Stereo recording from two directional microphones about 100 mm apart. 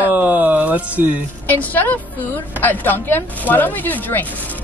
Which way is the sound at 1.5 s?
15° left (ahead or behind).